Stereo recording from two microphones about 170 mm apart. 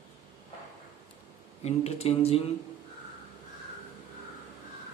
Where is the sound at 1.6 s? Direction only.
40° left (ahead or behind).